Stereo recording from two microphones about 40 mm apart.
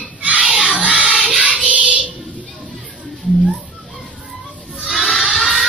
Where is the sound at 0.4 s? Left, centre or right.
Centre.